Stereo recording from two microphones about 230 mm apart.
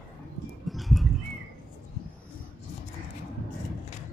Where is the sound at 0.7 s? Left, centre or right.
Centre.